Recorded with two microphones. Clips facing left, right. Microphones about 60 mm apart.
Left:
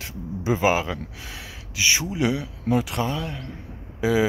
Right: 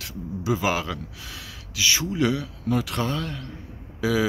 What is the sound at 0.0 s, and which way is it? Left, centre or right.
Speech, left.